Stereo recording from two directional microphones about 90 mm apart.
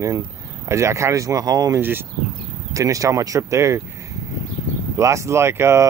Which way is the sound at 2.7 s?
40° right (ahead or behind).